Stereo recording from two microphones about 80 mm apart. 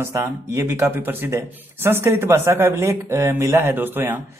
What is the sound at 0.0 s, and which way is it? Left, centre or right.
Speech, right.